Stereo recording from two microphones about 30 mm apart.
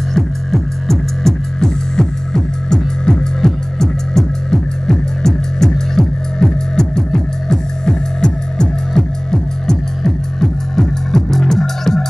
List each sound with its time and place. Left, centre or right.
0.1 s music: centre